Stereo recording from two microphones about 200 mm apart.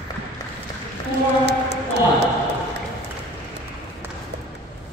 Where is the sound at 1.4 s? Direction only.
55° right (ahead or behind).